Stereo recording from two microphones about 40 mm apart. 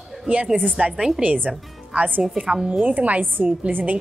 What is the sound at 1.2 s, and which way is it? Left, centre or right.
A woman's voice, right.